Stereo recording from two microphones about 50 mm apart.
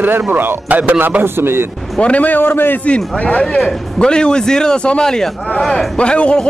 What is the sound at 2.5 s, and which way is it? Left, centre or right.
Speech, left.